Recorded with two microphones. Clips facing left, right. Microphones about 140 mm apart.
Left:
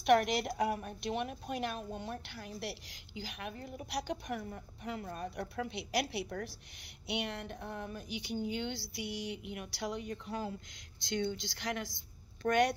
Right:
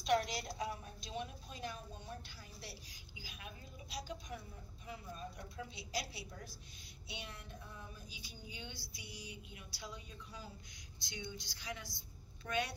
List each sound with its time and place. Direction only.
0.0 s a woman's voice: 65° left (ahead or behind)